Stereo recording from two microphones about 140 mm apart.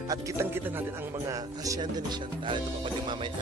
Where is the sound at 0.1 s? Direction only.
20° right (ahead or behind).